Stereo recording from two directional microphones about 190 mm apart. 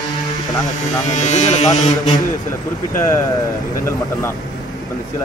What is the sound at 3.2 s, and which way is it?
Speech, 20° left (ahead or behind).